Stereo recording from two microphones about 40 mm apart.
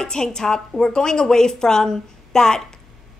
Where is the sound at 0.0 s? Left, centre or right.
Centre.